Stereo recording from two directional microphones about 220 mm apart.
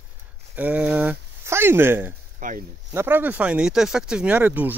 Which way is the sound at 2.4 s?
35° right (ahead or behind).